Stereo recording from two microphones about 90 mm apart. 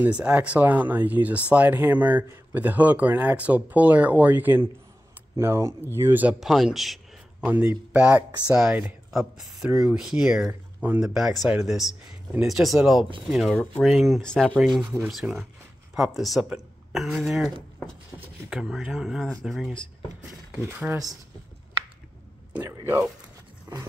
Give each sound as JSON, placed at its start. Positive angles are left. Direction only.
{"t": 0.0, "sound": "speech", "side_deg": -15}
{"t": 6.4, "sound": "a man's voice", "side_deg": -5}
{"t": 7.4, "sound": "speech", "side_deg": -15}
{"t": 9.1, "sound": "speech", "side_deg": 0}
{"t": 14.2, "sound": "speech", "side_deg": 10}
{"t": 14.8, "sound": "speech", "side_deg": -5}
{"t": 18.5, "sound": "speech", "side_deg": -5}
{"t": 20.6, "sound": "speech", "side_deg": -25}
{"t": 22.5, "sound": "speech", "side_deg": -25}
{"t": 23.7, "sound": "dog", "side_deg": -45}